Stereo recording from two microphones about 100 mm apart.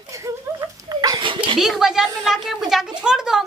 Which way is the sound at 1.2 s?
55° right (ahead or behind).